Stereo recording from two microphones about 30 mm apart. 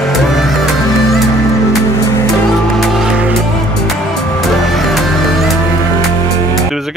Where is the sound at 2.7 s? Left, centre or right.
Centre.